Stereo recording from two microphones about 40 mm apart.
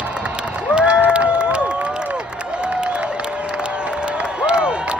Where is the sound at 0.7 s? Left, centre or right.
Right.